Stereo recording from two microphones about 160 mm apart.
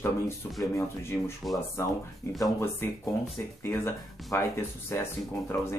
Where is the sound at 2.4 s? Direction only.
15° left (ahead or behind).